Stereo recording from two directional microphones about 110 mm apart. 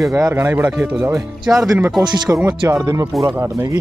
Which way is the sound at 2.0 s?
40° right (ahead or behind).